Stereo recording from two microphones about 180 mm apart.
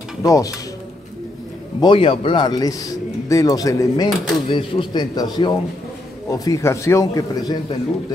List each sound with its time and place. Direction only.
0.2 s speech: 20° left (ahead or behind)
1.8 s a man's voice: 30° left (ahead or behind)